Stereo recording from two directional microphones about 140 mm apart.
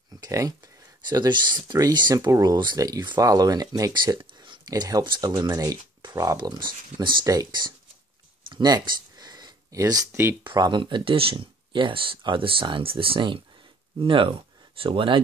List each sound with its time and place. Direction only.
0.2 s speech: 25° right (ahead or behind)
8.5 s a sound: 30° right (ahead or behind)
10.4 s speech: 30° right (ahead or behind)